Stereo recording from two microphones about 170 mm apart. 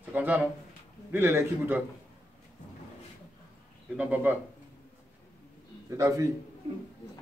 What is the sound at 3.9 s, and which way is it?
Speech, 10° right (ahead or behind).